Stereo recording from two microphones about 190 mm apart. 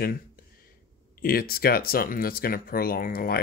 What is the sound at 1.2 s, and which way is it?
Speech, 50° left (ahead or behind).